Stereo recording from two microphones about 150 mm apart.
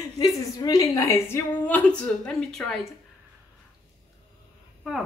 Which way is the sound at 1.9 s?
5° left (ahead or behind).